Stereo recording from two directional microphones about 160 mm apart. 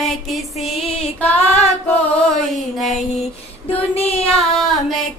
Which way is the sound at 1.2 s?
10° left (ahead or behind).